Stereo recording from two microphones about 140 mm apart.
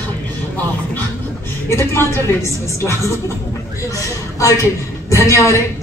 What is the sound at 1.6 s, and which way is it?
A woman's voice, 20° left (ahead or behind).